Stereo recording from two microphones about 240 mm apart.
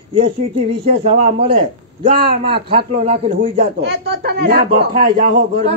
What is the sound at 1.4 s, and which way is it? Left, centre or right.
A woman's voice, right.